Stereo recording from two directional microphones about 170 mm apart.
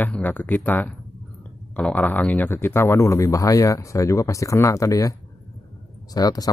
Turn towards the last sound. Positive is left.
turn(degrees=20)  # may be behind; listen again after turning